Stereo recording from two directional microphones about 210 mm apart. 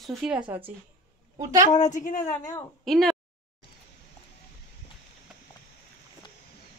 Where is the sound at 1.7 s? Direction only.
35° left (ahead or behind).